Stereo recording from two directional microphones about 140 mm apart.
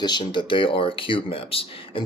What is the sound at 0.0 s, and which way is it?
Speech, 30° left (ahead or behind).